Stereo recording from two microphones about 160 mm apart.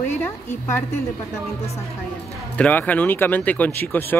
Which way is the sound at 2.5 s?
10° left (ahead or behind).